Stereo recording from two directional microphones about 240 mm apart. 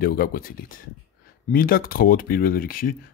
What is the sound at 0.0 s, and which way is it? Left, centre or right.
Speech, left.